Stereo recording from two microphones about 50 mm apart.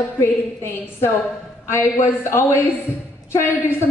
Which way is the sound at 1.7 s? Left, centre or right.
Left.